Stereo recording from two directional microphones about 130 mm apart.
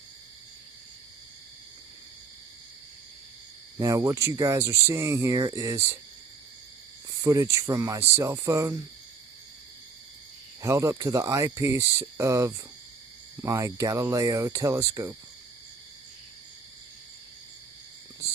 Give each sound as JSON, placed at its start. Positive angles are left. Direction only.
{"t": 3.7, "sound": "speech", "side_deg": -25}
{"t": 7.1, "sound": "speech", "side_deg": -25}
{"t": 10.6, "sound": "speech", "side_deg": -25}